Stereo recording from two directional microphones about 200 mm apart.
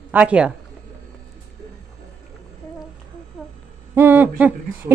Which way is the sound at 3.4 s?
5° right (ahead or behind).